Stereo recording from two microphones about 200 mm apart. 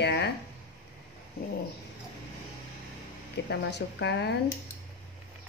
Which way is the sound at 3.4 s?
55° left (ahead or behind).